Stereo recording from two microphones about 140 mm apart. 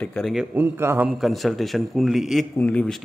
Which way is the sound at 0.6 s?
15° right (ahead or behind).